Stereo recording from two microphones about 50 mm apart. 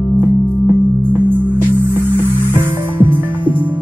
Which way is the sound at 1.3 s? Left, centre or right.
Right.